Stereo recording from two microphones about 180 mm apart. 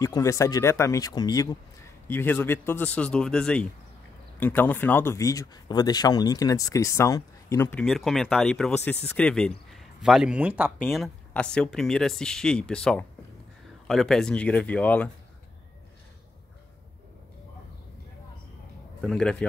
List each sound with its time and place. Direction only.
0.0 s speech: 20° left (ahead or behind)
7.8 s speech: centre (ahead or behind)
18.9 s a man's voice: 5° left (ahead or behind)